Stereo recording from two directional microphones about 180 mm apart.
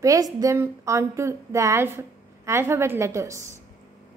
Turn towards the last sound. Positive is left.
turn(degrees=-15)  # may be behind; listen again after turning